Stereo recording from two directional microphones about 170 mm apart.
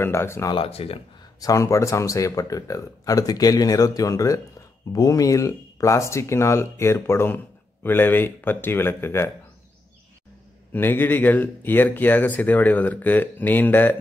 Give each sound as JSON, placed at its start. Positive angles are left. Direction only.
{"t": 0.0, "sound": "speech", "side_deg": 15}
{"t": 0.6, "sound": "speech", "side_deg": 35}
{"t": 1.4, "sound": "speech", "side_deg": 20}
{"t": 10.7, "sound": "speech", "side_deg": 10}